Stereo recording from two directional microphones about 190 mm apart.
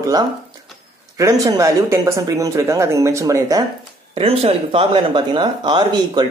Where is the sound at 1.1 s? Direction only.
20° right (ahead or behind).